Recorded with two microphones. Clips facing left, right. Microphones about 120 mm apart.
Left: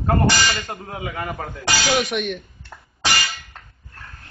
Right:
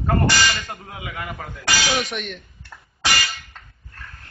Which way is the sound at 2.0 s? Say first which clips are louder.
Left 5 dB; 10° left (ahead or behind).